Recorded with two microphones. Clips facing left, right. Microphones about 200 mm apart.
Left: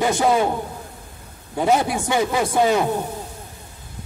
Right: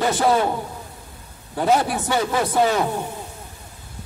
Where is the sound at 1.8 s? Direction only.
15° left (ahead or behind).